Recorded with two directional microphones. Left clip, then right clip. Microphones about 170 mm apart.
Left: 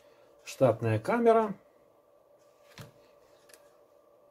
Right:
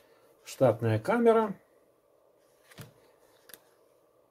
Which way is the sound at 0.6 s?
5° right (ahead or behind).